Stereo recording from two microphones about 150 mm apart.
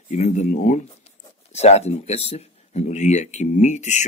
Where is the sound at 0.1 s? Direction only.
50° left (ahead or behind).